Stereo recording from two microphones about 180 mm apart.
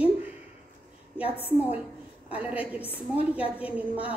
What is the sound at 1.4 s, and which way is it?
A woman's voice, 10° right (ahead or behind).